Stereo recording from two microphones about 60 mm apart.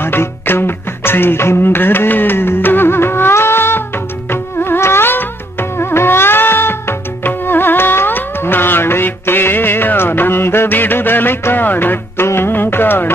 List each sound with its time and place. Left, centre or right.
0.0 s music: left